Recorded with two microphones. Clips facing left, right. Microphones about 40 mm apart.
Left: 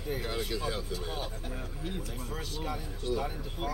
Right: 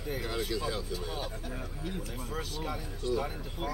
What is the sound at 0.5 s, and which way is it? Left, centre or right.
Speech, left.